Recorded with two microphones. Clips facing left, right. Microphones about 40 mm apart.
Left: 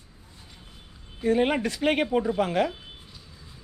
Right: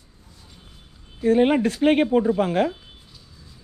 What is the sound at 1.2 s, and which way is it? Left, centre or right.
Speech, right.